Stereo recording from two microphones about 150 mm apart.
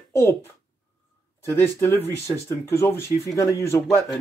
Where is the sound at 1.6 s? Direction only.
15° left (ahead or behind).